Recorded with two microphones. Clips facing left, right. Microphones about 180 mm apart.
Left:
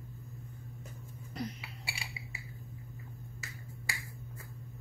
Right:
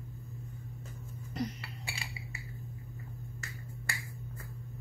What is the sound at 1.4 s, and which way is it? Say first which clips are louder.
Chink: right 3 dB; centre (ahead or behind).